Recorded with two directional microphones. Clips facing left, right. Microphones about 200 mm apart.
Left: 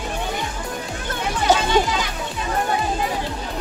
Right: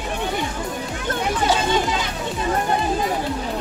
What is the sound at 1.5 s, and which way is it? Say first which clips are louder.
Children playing: left 5 dB; 45° left (ahead or behind).